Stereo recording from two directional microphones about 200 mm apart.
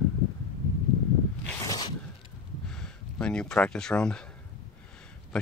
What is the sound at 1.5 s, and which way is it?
Zipper, 15° left (ahead or behind).